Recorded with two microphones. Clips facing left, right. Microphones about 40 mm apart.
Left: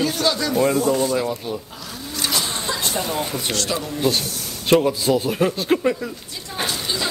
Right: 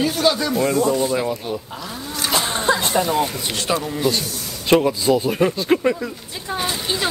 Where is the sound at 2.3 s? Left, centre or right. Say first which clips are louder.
Right 8 dB; right.